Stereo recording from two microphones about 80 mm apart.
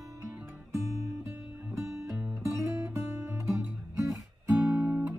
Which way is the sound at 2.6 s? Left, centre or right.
Right.